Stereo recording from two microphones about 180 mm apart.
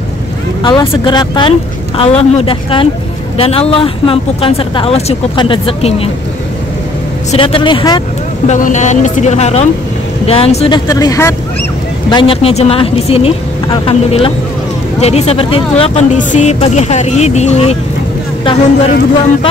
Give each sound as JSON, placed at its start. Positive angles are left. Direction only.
{"t": 0.6, "sound": "speech", "side_deg": 25}
{"t": 7.2, "sound": "speech", "side_deg": 30}
{"t": 8.5, "sound": "speech", "side_deg": 45}
{"t": 10.9, "sound": "speech", "side_deg": 20}
{"t": 12.1, "sound": "speech", "side_deg": 30}